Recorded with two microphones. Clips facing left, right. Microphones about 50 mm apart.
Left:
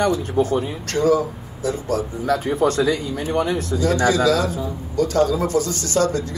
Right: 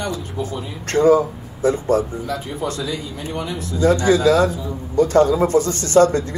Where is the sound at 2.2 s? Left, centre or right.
Left.